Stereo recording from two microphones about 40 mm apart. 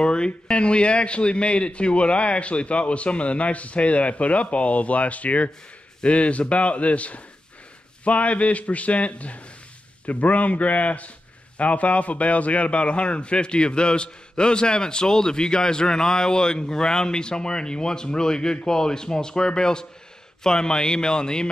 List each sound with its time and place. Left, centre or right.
0.0 s a man's voice: left